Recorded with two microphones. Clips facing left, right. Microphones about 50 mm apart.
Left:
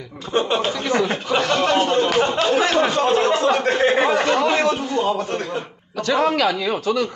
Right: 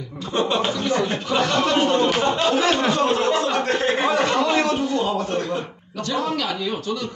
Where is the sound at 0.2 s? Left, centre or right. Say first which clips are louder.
Left 2 dB; centre.